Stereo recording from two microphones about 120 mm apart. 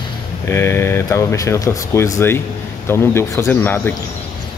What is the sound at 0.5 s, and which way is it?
Speech, 20° left (ahead or behind).